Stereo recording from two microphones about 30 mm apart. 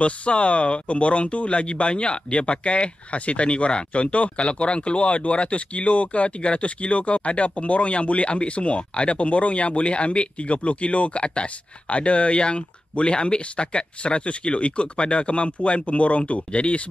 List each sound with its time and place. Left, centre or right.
0.0 s speech: left